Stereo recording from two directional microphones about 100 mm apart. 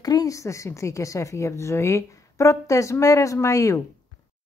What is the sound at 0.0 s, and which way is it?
A woman's voice, 35° left (ahead or behind).